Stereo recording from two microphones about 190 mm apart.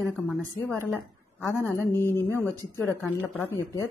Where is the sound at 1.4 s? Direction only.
15° left (ahead or behind).